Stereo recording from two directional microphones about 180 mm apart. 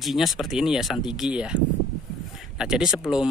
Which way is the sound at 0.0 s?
Centre (ahead or behind).